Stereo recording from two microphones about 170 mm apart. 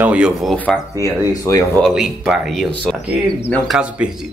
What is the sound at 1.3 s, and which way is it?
Speech, 20° left (ahead or behind).